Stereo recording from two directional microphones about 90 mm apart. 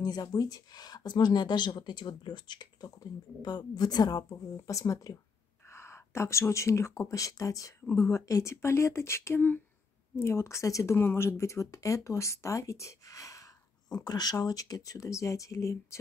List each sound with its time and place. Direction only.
0.0 s speech: 45° left (ahead or behind)